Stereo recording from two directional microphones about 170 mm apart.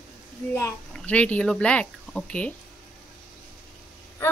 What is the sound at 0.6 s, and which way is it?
A child's voice, 10° left (ahead or behind).